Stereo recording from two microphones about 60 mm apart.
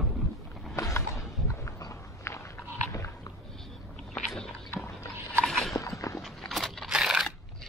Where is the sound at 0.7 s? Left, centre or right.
Left.